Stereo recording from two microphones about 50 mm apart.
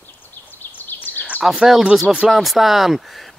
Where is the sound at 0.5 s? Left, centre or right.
Left.